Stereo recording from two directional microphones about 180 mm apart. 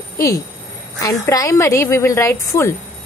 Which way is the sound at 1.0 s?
20° left (ahead or behind).